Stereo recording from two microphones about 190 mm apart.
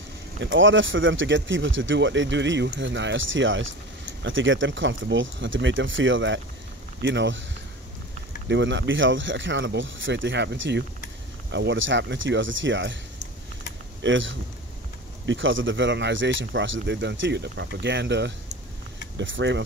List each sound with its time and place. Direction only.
0.4 s speech: 85° right
7.0 s speech: 70° right (ahead or behind)
8.5 s speech: 70° right (ahead or behind)
14.0 s speech: 75° right (ahead or behind)